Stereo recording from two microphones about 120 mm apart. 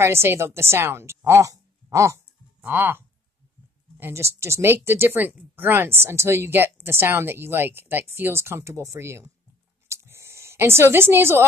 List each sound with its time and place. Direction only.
0.0 s a woman's voice: 20° right (ahead or behind)
4.0 s speech: 25° right (ahead or behind)
9.8 s a sound: 25° right (ahead or behind)